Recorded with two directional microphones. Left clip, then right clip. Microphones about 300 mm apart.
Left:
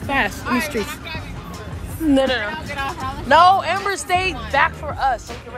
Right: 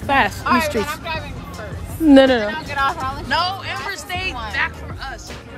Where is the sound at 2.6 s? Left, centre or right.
Centre.